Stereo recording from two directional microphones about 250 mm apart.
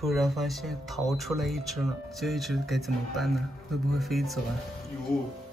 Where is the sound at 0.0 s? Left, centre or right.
Centre.